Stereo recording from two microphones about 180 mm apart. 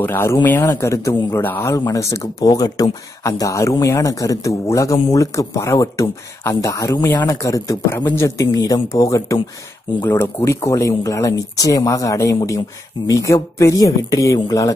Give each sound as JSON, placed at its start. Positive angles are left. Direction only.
{"t": 0.0, "sound": "a man's voice", "side_deg": 10}